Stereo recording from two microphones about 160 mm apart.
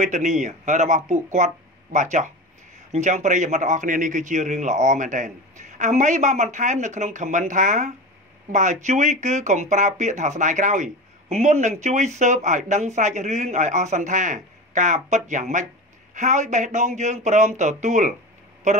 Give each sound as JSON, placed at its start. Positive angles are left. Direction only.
{"t": 0.0, "sound": "speech", "side_deg": -50}